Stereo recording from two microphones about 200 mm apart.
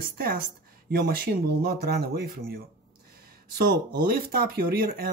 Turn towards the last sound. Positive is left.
turn(degrees=-50)  # may be behind; listen again after turning